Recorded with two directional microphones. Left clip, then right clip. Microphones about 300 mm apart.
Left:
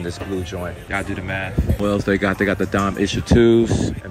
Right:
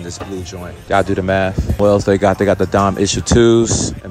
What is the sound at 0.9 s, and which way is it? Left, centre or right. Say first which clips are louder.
Speech: right 12 dB; centre.